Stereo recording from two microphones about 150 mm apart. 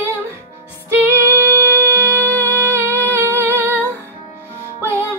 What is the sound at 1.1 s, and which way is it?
Music, 20° right (ahead or behind).